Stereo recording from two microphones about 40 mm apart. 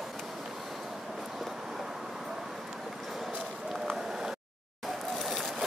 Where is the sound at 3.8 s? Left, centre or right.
Centre.